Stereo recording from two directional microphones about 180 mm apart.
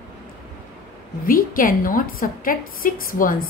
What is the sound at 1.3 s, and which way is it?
A woman's voice, 50° left (ahead or behind).